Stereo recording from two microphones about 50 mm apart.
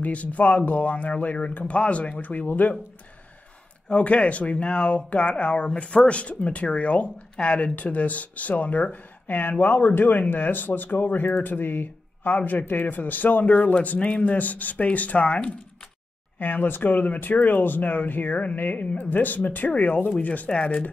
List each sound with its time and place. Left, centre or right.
0.0 s speech: left
3.9 s speech: left
16.3 s speech: left